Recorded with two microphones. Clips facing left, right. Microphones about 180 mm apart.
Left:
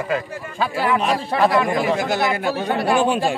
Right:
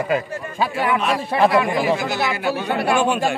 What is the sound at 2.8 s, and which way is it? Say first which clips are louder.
Speech: left 1 dB; 35° left (ahead or behind).